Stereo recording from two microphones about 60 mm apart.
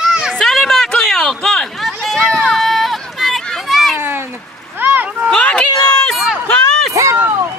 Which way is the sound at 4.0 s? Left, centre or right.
Right.